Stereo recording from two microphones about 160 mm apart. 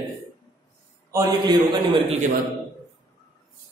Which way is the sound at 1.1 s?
25° right (ahead or behind).